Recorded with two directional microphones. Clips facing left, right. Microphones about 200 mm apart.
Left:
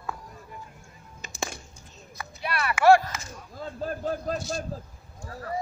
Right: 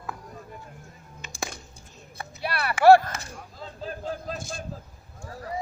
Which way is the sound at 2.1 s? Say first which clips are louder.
Even; 35° right (ahead or behind).